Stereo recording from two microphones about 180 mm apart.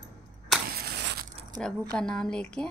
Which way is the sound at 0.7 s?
60° right (ahead or behind).